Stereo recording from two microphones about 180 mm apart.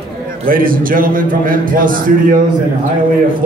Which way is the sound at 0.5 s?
50° right (ahead or behind).